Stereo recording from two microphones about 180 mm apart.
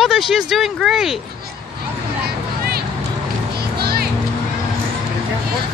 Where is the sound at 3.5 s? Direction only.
60° right (ahead or behind).